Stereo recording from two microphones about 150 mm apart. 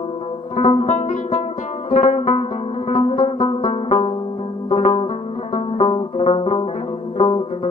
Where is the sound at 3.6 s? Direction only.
50° left (ahead or behind).